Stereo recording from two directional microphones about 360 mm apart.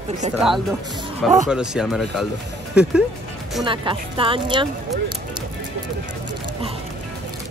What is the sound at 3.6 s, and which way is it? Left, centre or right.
Speech, centre.